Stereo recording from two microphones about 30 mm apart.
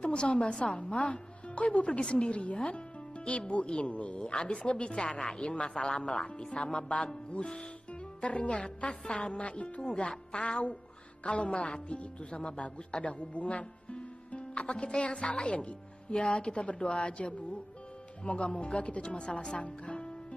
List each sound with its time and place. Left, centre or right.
0.0 s a woman's voice: left
0.7 s speech: left
1.9 s speech: left
7.9 s music: left
8.8 s speech: left
13.0 s speech: left
18.2 s speech: left